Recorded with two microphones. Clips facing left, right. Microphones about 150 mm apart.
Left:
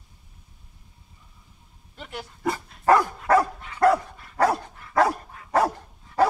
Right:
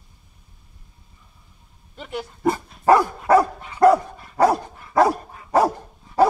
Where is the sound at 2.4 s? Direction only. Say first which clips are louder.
Right 4 dB; 20° right (ahead or behind).